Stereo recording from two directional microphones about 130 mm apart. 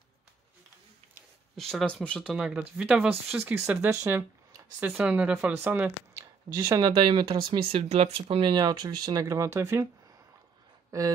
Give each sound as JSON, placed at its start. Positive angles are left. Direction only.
{"t": 1.6, "sound": "speech", "side_deg": 5}
{"t": 2.3, "sound": "speech", "side_deg": -5}
{"t": 3.9, "sound": "a sound", "side_deg": -25}
{"t": 4.7, "sound": "speech", "side_deg": -10}
{"t": 7.0, "sound": "speech", "side_deg": -35}
{"t": 7.6, "sound": "speech", "side_deg": -50}
{"t": 10.9, "sound": "speech", "side_deg": -25}